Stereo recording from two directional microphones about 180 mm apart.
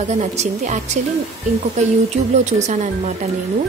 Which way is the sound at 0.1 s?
40° right (ahead or behind).